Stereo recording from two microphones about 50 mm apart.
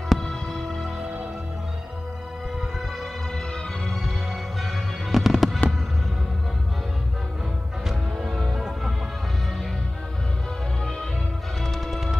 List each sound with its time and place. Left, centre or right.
0.1 s music: centre
3.8 s fireworks: centre
7.8 s music: centre
8.5 s music: centre
11.6 s music: centre